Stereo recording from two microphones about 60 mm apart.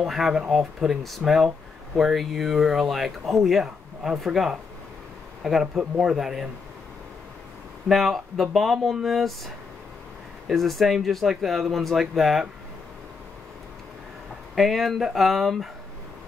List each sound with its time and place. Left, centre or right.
0.0 s speech: centre
0.3 s speech: centre
7.9 s speech: centre
10.5 s speech: centre
14.5 s speech: centre